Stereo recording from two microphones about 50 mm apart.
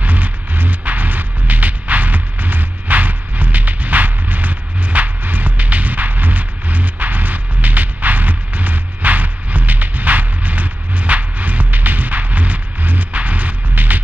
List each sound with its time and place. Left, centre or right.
0.0 s music: right